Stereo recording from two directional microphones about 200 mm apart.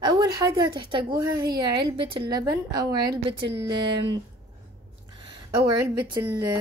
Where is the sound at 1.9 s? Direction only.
25° right (ahead or behind).